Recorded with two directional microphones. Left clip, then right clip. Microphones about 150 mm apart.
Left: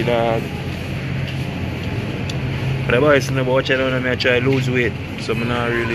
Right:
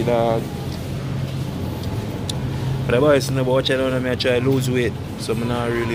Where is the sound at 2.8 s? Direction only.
10° right (ahead or behind).